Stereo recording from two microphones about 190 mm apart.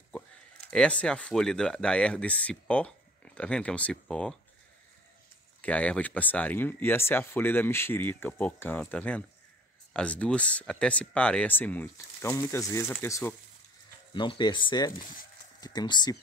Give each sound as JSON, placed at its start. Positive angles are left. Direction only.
{"t": 0.7, "sound": "speech", "side_deg": 5}
{"t": 5.6, "sound": "speech", "side_deg": 5}
{"t": 14.1, "sound": "speech", "side_deg": 25}